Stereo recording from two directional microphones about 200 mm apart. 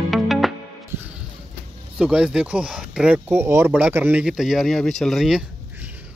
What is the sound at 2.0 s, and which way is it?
Speech, 5° right (ahead or behind).